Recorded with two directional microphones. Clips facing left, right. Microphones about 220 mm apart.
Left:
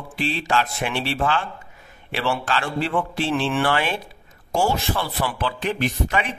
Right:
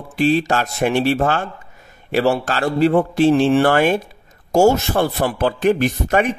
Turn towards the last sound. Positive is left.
turn(degrees=-45)  # may be behind; listen again after turning